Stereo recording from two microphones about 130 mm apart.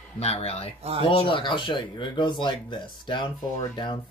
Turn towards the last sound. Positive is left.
turn(degrees=40)  # may be behind; listen again after turning